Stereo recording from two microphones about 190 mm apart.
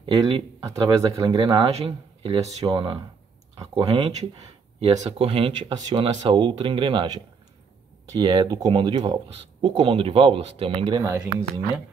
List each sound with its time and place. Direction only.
0.0 s speech: 25° right (ahead or behind)
8.2 s speech: 25° right (ahead or behind)